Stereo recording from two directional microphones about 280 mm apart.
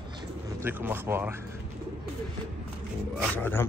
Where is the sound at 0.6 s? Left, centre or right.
Centre.